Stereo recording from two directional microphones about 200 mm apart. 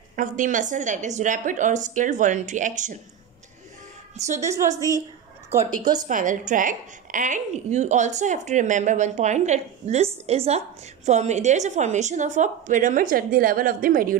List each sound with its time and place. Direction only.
0.1 s a woman's voice: 40° right (ahead or behind)
4.4 s a woman's voice: 15° right (ahead or behind)
6.0 s a woman's voice: 40° right (ahead or behind)